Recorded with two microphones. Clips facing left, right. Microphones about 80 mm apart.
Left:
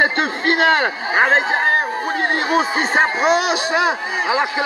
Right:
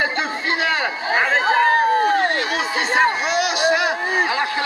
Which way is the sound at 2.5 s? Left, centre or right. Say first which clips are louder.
Left 3 dB; left.